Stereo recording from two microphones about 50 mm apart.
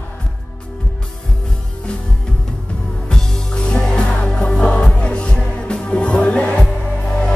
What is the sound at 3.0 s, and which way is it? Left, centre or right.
Music, centre.